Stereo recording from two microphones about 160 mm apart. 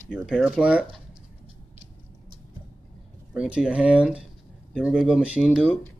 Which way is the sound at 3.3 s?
5° right (ahead or behind).